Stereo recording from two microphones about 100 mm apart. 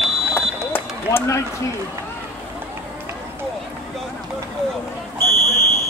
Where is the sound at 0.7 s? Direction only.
20° left (ahead or behind).